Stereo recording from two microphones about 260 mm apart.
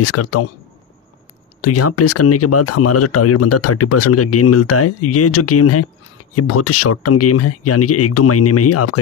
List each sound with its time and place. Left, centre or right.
0.0 s speech: left
1.6 s speech: left